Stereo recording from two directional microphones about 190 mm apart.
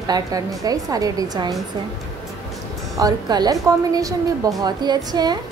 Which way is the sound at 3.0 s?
20° right (ahead or behind).